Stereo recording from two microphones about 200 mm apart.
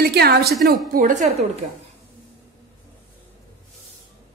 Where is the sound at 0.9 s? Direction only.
40° right (ahead or behind).